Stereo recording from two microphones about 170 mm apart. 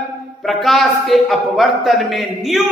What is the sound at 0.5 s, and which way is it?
A man's voice, centre (ahead or behind).